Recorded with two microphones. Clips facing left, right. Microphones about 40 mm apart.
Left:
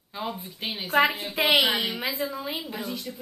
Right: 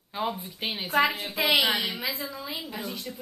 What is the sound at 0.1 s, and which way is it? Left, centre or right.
Speech, centre.